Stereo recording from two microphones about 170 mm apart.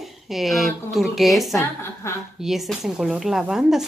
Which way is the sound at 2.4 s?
Centre (ahead or behind).